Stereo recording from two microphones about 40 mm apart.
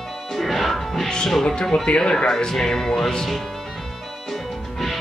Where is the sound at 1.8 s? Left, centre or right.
Left; by 3.4 s centre.